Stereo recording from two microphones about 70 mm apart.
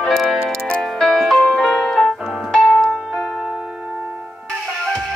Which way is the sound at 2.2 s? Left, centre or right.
Centre.